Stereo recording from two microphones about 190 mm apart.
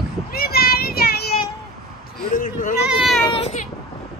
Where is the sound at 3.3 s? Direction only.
30° left (ahead or behind).